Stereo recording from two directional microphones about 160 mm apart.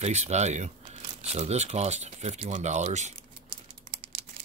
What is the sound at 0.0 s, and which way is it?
Speech, 45° right (ahead or behind).